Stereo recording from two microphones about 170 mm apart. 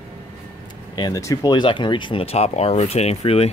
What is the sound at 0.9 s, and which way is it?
Speech, 20° left (ahead or behind).